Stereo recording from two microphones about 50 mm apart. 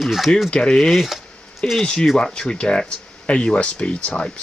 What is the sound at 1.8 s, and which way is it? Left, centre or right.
Speech, centre.